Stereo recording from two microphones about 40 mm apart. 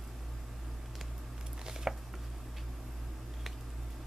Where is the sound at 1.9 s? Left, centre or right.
Centre.